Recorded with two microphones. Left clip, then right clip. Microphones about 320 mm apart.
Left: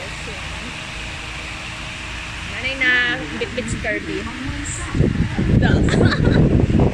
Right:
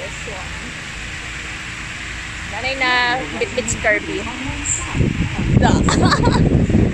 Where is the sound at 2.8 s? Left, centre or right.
Centre.